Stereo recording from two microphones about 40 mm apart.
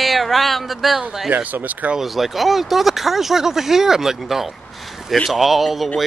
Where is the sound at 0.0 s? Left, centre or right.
Centre.